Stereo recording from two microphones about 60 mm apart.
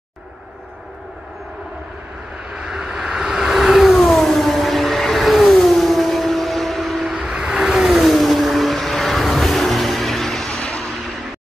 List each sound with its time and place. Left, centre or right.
2.5 s vehicle: centre